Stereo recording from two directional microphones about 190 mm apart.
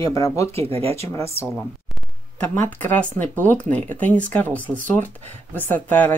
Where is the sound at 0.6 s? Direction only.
30° right (ahead or behind).